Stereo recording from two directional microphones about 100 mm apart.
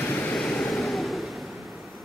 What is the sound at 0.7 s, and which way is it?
Vehicle, centre (ahead or behind).